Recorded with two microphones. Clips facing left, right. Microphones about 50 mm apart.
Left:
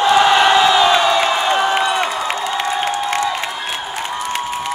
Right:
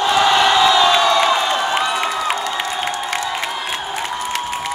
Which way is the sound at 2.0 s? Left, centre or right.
Centre.